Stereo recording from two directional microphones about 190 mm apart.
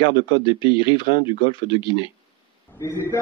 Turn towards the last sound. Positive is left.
turn(degrees=15)  # may be behind; listen again after turning